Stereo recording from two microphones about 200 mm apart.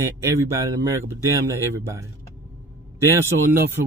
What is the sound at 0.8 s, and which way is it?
Speech, 15° right (ahead or behind).